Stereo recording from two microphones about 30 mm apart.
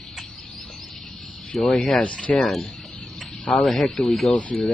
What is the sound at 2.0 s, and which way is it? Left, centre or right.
Speech, left.